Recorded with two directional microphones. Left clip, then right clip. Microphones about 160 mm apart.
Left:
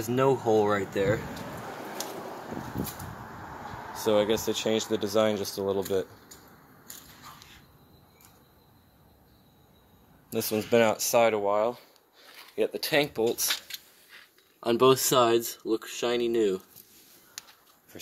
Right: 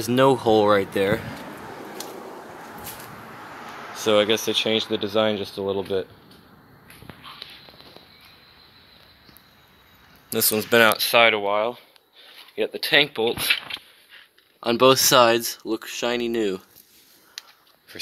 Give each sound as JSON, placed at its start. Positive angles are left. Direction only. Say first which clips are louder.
{"t": 0.0, "sound": "speech", "louder": "right 7 dB", "side_deg": -20}
{"t": 3.9, "sound": "speech", "louder": "right 5 dB", "side_deg": -5}
{"t": 10.3, "sound": "speech", "louder": "right 5 dB", "side_deg": -5}
{"t": 11.0, "sound": "speech", "louder": "right 6 dB", "side_deg": 20}
{"t": 14.6, "sound": "speech", "louder": "right 5 dB", "side_deg": 0}